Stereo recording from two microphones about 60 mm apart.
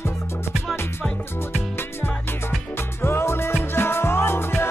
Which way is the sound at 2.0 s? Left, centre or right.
Left.